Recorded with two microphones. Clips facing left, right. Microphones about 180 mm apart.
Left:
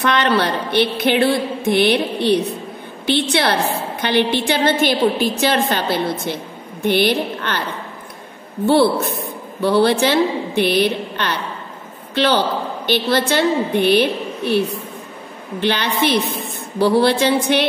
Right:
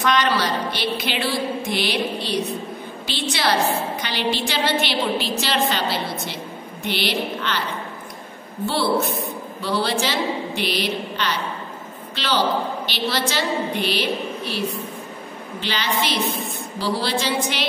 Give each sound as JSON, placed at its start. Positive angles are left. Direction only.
{"t": 0.0, "sound": "a woman's voice", "side_deg": 60}
{"t": 8.6, "sound": "a woman's voice", "side_deg": 55}
{"t": 15.6, "sound": "a woman's voice", "side_deg": 55}